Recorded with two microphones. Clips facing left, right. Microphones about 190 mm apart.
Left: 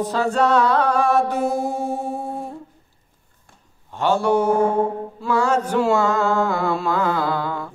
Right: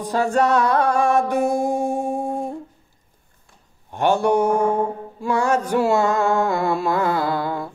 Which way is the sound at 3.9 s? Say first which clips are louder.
Right 1 dB; 15° right (ahead or behind).